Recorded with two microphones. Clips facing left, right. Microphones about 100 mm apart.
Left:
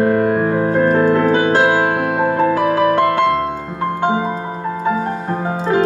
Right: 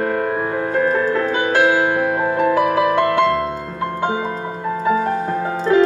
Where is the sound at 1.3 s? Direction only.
35° left (ahead or behind).